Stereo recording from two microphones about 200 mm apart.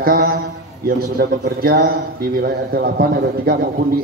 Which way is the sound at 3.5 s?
50° right (ahead or behind).